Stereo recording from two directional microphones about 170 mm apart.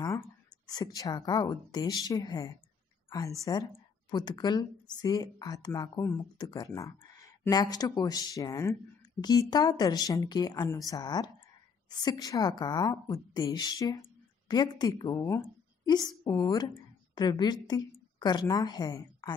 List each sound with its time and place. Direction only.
0.7 s a woman's voice: 20° left (ahead or behind)